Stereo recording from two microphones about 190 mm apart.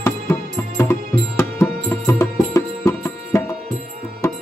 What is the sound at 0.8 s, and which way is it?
Music, 15° left (ahead or behind).